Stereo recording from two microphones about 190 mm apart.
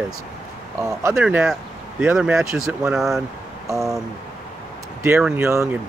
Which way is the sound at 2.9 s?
Centre (ahead or behind).